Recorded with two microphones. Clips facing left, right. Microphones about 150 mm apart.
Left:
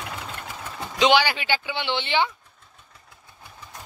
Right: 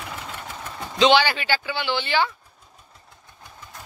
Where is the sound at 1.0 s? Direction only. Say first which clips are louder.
Right 2 dB; 15° left (ahead or behind).